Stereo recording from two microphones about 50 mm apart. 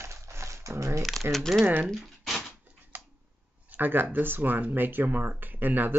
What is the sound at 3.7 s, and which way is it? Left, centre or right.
Speech, right.